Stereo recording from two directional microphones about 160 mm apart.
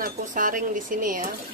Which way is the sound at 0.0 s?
55° right (ahead or behind).